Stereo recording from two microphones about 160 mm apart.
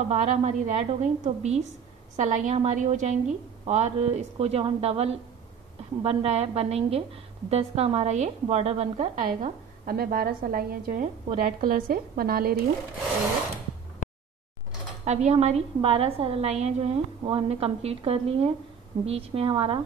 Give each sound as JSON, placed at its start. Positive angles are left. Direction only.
{"t": 0.1, "sound": "a woman's voice", "side_deg": -45}
{"t": 15.0, "sound": "a woman's voice", "side_deg": -45}